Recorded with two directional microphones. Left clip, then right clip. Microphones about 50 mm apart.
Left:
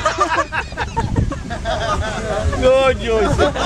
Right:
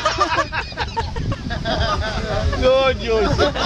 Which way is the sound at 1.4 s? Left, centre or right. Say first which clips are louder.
Even; right.